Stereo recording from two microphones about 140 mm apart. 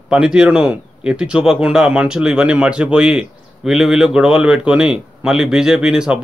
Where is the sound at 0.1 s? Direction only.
5° right (ahead or behind).